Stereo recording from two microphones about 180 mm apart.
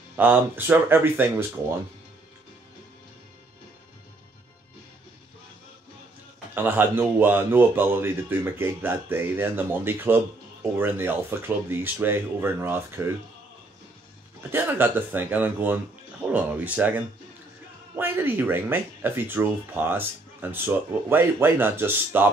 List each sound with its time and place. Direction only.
0.2 s speech: 10° right (ahead or behind)
6.5 s speech: 10° right (ahead or behind)
14.5 s speech: 10° right (ahead or behind)